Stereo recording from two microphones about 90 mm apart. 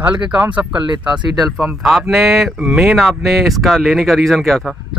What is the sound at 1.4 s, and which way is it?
Speech, 5° right (ahead or behind).